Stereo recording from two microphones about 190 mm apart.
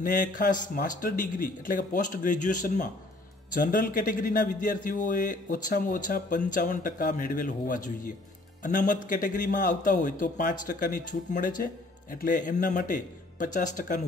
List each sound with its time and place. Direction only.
0.0 s a man's voice: 45° left (ahead or behind)